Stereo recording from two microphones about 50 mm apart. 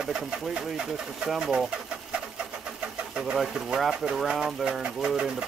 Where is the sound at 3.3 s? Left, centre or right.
Centre.